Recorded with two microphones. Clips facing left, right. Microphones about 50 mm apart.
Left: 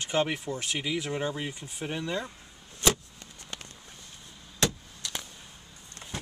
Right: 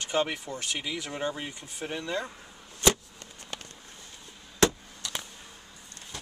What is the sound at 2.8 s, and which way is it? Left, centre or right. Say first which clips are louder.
Vehicle: right 2 dB; centre.